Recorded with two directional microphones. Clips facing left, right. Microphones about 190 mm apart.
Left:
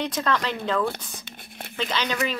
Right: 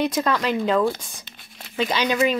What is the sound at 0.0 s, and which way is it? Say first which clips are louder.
A child's voice: right 4 dB; 10° right (ahead or behind).